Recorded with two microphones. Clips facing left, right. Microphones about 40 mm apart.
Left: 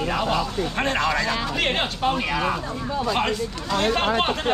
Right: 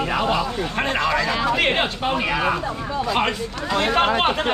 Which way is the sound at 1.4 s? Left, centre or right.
Centre.